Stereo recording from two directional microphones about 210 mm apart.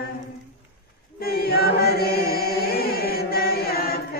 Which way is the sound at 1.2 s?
45° left (ahead or behind).